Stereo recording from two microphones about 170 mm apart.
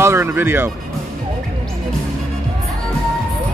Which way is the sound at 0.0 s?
15° right (ahead or behind).